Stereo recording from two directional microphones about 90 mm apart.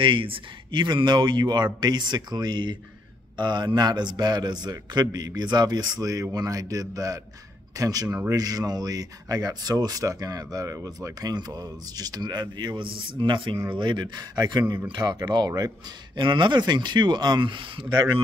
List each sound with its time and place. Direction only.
0.0 s speech: 70° right (ahead or behind); by 15.7 s 45° right (ahead or behind)
16.2 s speech: 60° right (ahead or behind)